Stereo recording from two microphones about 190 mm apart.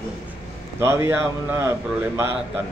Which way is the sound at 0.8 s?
15° right (ahead or behind).